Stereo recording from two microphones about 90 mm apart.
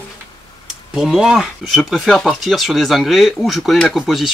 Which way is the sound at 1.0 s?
5° right (ahead or behind).